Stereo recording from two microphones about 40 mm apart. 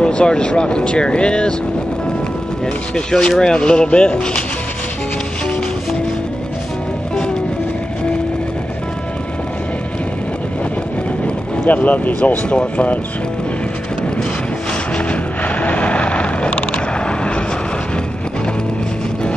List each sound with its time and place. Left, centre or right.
0.0 s speech: left
3.1 s speech: centre
11.6 s speech: left
12.4 s speech: left
15.0 s vehicle: left